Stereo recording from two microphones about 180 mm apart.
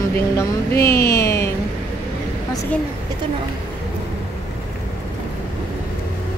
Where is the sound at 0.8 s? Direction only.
60° left (ahead or behind).